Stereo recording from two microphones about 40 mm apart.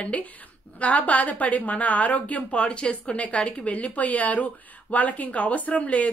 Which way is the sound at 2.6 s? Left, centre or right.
Left.